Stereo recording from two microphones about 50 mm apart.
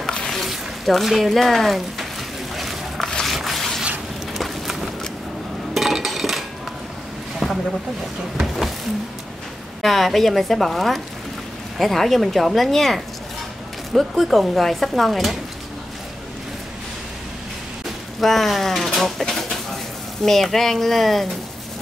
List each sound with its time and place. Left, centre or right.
0.1 s a sound: centre
0.4 s speech: centre
2.5 s a sound: centre
5.8 s chink: centre
8.4 s speech: centre
9.8 s speech: centre
18.2 s speech: centre